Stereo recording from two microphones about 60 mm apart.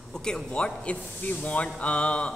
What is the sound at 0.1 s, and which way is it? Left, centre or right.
A man's voice, centre.